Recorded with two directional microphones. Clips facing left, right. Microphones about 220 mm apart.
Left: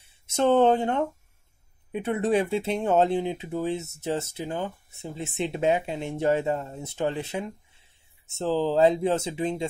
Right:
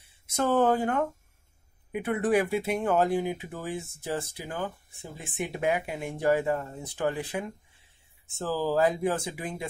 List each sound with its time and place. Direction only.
0.3 s speech: 25° left (ahead or behind)